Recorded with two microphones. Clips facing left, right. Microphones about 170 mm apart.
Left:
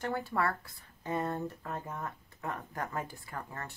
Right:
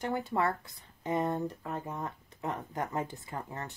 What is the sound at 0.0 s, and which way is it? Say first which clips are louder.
Speech: right 2 dB; 20° right (ahead or behind).